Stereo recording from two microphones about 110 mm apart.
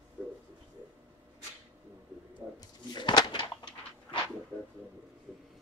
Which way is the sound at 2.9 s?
40° left (ahead or behind).